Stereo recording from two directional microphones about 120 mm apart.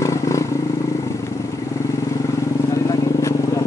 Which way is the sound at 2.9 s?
25° left (ahead or behind).